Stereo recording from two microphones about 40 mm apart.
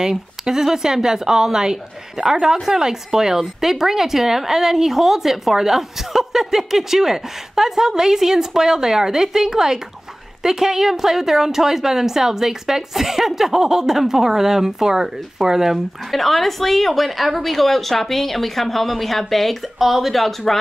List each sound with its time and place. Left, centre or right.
0.0 s speech: centre